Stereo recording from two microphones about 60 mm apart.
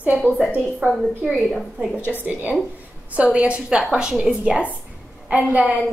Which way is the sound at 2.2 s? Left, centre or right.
Right.